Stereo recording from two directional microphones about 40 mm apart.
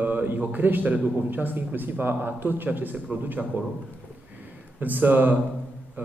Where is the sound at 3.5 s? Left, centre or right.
Right.